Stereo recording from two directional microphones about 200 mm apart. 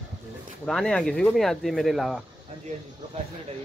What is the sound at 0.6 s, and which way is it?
Speech, centre (ahead or behind).